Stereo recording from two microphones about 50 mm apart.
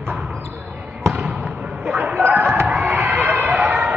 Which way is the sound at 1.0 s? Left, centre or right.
Centre.